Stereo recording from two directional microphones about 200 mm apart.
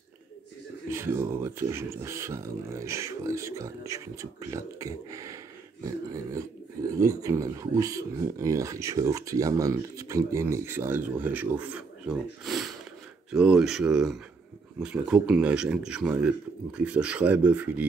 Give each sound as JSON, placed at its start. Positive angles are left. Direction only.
{"t": 0.8, "sound": "speech", "side_deg": -10}
{"t": 7.0, "sound": "speech", "side_deg": -15}